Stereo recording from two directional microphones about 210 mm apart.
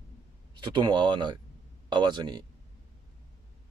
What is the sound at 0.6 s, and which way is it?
Speech, 20° right (ahead or behind).